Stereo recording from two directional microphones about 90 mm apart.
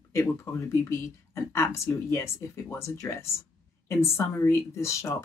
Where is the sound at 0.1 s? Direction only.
30° left (ahead or behind).